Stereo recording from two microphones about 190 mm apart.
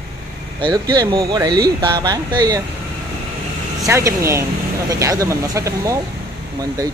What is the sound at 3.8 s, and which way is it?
Speech, 15° right (ahead or behind).